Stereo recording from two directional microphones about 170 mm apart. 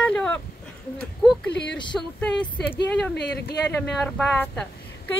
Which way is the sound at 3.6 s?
5° left (ahead or behind).